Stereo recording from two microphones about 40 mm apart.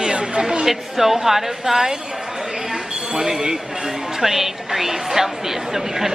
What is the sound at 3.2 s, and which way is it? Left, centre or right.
A woman's voice, centre.